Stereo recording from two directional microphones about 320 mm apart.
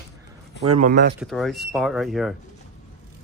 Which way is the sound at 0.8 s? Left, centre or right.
Right.